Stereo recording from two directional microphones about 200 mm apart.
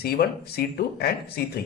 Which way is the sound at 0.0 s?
50° left (ahead or behind).